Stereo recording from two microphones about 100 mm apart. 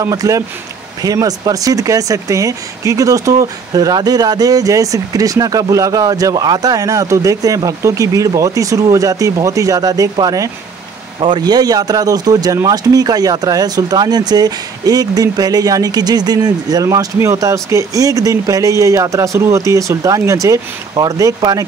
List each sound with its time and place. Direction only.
0.0 s speech: 35° right (ahead or behind)
11.1 s speech: 50° right (ahead or behind); by 21.1 s 35° right (ahead or behind)
21.4 s speech: 45° right (ahead or behind)